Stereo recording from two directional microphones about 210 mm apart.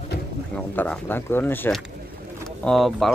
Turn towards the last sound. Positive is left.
turn(degrees=0)  # may be behind; listen again after turning